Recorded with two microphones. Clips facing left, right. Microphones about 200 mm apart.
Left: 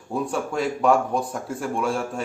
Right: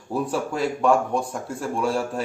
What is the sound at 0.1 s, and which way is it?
Speech, centre (ahead or behind).